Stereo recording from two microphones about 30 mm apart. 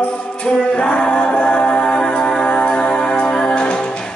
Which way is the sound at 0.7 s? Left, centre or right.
Left.